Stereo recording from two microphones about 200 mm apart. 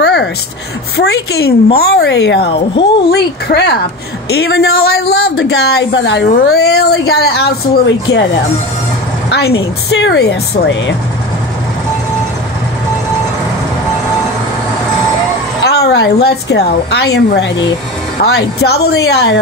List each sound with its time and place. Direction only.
0.0 s a sound: 55° left (ahead or behind)
0.9 s a woman's voice: 55° left (ahead or behind)
9.3 s a woman's voice: 55° left (ahead or behind)
15.6 s a woman's voice: 55° left (ahead or behind)